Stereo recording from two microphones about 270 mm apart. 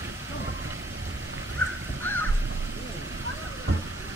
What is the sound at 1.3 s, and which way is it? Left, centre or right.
Crow, right.